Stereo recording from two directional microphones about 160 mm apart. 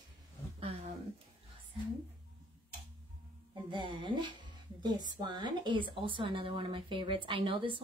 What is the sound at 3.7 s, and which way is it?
A woman's voice, 30° right (ahead or behind).